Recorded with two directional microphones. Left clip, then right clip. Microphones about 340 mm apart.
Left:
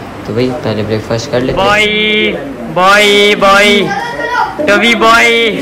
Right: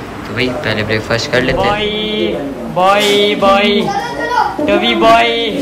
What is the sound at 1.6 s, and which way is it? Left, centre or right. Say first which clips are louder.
A man's voice: left 6 dB; centre.